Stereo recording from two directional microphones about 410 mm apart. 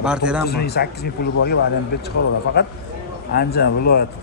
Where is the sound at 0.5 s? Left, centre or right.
Left.